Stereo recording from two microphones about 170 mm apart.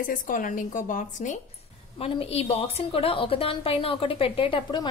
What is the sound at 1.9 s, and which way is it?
A woman's voice, 35° left (ahead or behind).